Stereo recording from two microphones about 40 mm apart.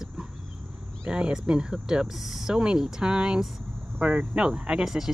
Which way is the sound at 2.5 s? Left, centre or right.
Centre.